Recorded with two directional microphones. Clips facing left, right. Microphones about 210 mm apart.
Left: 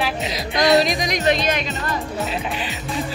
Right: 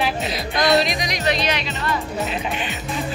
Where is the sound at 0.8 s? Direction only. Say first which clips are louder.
Left 3 dB; 45° left (ahead or behind).